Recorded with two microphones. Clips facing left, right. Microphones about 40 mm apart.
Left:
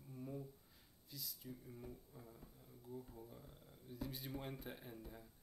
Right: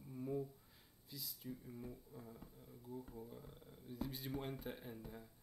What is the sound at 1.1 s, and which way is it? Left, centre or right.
Speech, centre.